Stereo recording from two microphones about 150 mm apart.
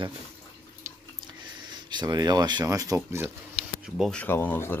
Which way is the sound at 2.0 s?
25° right (ahead or behind).